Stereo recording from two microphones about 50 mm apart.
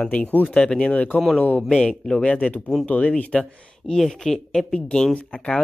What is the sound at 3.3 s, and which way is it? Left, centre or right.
Speech, centre.